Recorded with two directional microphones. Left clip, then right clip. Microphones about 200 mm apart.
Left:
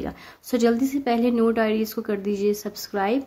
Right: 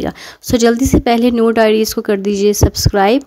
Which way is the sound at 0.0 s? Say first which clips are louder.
Right 11 dB; 50° right (ahead or behind).